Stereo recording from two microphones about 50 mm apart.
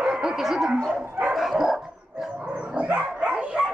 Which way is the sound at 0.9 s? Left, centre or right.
Right.